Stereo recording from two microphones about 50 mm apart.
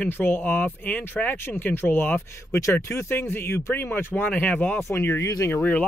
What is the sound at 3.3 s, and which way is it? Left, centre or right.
Speech, left.